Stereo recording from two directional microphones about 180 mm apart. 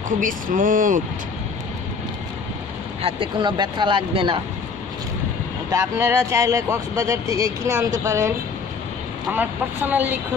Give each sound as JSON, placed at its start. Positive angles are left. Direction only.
{"t": 0.2, "sound": "speech", "side_deg": -50}
{"t": 3.0, "sound": "speech", "side_deg": -30}
{"t": 5.7, "sound": "speech", "side_deg": -15}
{"t": 9.3, "sound": "speech", "side_deg": -10}